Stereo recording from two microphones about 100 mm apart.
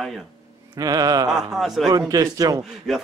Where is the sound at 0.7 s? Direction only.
40° right (ahead or behind).